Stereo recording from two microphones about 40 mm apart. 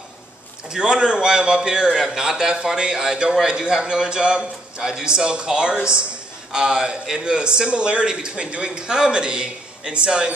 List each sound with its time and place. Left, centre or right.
0.7 s a man's voice: centre